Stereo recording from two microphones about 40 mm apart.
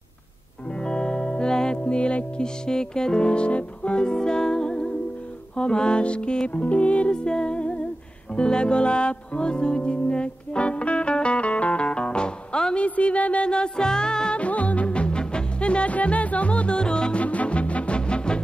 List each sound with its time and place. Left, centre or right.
0.8 s music: centre
12.7 s a woman's voice: left
13.5 s music: left
14.4 s music: left